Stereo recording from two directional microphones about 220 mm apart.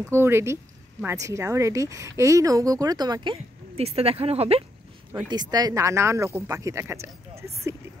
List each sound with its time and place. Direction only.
0.0 s speech: 10° right (ahead or behind)